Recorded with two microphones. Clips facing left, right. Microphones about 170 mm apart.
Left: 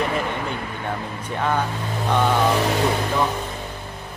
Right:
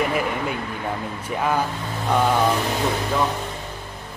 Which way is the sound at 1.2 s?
5° right (ahead or behind).